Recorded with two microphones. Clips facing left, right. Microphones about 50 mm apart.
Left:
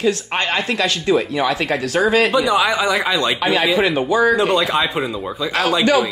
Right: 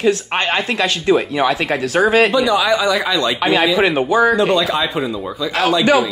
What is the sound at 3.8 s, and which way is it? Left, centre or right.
Speech, right.